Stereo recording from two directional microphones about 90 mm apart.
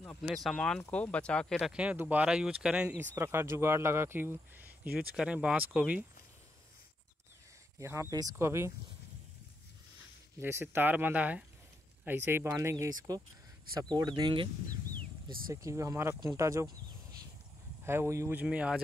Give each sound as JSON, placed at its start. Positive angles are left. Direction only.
{"t": 0.3, "sound": "speech", "side_deg": 0}
{"t": 0.6, "sound": "speech", "side_deg": 15}
{"t": 1.7, "sound": "speech", "side_deg": -10}
{"t": 2.2, "sound": "speech", "side_deg": -10}
{"t": 3.2, "sound": "speech", "side_deg": -30}
{"t": 5.1, "sound": "speech", "side_deg": -10}
{"t": 7.8, "sound": "speech", "side_deg": -30}
{"t": 10.4, "sound": "speech", "side_deg": -25}
{"t": 13.7, "sound": "speech", "side_deg": -50}
{"t": 15.5, "sound": "speech", "side_deg": -35}
{"t": 17.8, "sound": "speech", "side_deg": -30}
{"t": 18.4, "sound": "speech", "side_deg": -15}